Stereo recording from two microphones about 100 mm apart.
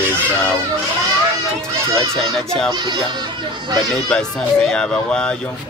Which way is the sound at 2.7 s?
45° right (ahead or behind).